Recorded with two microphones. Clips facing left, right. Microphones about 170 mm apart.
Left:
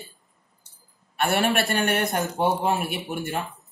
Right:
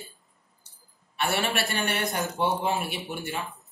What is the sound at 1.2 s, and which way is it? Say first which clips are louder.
A man's voice: left 5 dB; 60° left (ahead or behind).